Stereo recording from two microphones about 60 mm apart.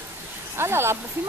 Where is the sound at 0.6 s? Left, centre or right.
Right.